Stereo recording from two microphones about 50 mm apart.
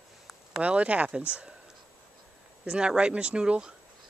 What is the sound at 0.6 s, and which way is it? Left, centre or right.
Speech, right.